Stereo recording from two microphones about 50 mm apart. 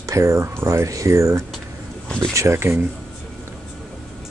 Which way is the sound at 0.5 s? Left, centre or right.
Right.